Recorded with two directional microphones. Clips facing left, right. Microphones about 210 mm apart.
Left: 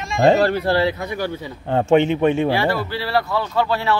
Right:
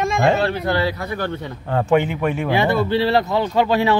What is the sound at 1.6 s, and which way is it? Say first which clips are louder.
Speech: left 2 dB; 25° left (ahead or behind).